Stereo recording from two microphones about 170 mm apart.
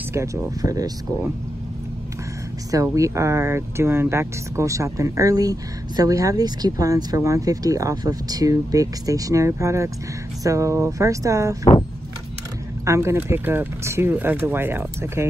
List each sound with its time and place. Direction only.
0.1 s speech: 15° right (ahead or behind)
2.7 s speech: 20° right (ahead or behind)
12.8 s speech: 15° right (ahead or behind)